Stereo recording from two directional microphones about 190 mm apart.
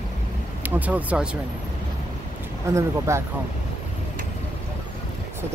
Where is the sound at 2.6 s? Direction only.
15° right (ahead or behind).